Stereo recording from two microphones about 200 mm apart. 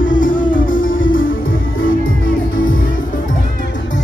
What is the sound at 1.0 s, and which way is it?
Music, 80° left.